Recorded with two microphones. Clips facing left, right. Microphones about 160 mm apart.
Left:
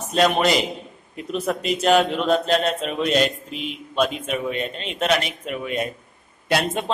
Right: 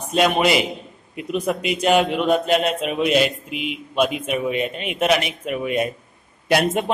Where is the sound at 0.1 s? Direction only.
5° right (ahead or behind).